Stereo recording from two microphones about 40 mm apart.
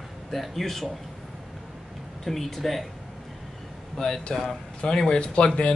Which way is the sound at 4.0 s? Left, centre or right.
Centre.